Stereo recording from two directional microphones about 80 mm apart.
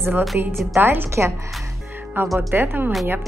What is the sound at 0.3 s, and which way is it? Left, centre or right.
Speech, centre.